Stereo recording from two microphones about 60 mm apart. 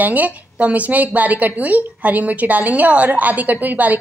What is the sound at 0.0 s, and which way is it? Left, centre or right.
A woman's voice, right.